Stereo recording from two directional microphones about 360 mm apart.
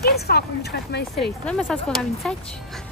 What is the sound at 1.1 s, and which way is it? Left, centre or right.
Speech, centre.